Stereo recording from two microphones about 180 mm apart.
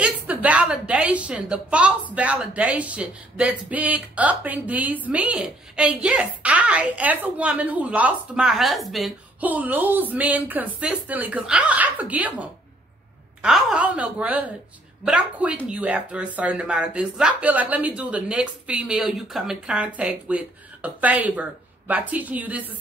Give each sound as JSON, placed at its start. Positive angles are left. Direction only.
{"t": 0.0, "sound": "a woman's voice", "side_deg": -10}